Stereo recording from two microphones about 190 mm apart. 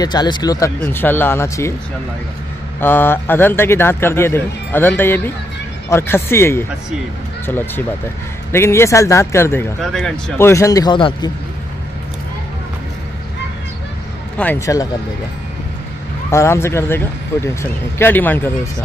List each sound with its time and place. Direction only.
0.0 s speech: 20° left (ahead or behind)
2.8 s speech: 10° left (ahead or behind)
14.3 s speech: 10° left (ahead or behind)
16.3 s speech: 15° left (ahead or behind)